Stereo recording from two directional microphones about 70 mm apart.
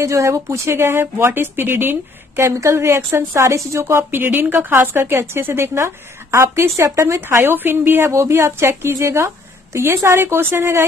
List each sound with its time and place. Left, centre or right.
0.0 s a woman's voice: right